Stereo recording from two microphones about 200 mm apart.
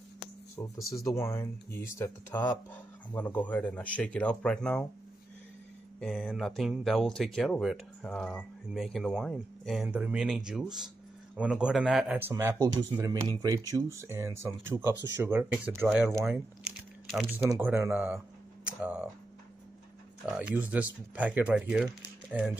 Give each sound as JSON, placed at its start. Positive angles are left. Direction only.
{"t": 0.7, "sound": "speech", "side_deg": 0}
{"t": 1.0, "sound": "speech", "side_deg": 15}
{"t": 5.9, "sound": "speech", "side_deg": 0}
{"t": 16.3, "sound": "crumpling", "side_deg": 0}
{"t": 17.5, "sound": "speech", "side_deg": -10}
{"t": 20.2, "sound": "speech", "side_deg": -5}